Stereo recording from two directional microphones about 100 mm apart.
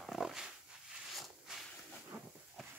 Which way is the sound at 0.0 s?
5° right (ahead or behind).